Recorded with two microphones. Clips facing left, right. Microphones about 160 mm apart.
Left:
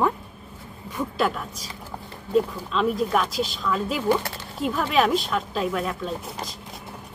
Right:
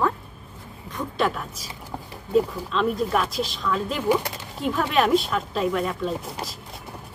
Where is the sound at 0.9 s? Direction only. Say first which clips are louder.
Even; 5° left (ahead or behind).